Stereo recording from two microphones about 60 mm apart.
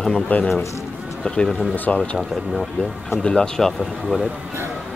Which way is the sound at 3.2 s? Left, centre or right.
Centre.